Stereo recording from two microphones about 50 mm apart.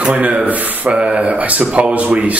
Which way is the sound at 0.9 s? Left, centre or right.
Right.